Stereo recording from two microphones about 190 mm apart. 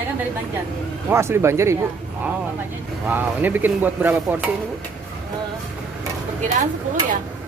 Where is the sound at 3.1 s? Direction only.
10° right (ahead or behind).